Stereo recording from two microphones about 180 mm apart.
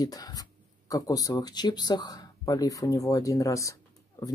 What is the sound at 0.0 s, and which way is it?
Speech, 20° left (ahead or behind).